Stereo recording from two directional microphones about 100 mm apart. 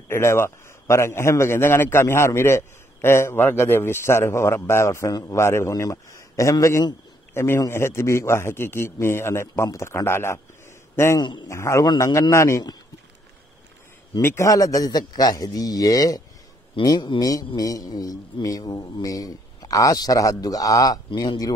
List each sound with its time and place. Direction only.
0.1 s a man's voice: 25° left (ahead or behind)
11.1 s a man's voice: 45° left (ahead or behind)
11.4 s a man's voice: 30° left (ahead or behind)
14.2 s a man's voice: 30° left (ahead or behind)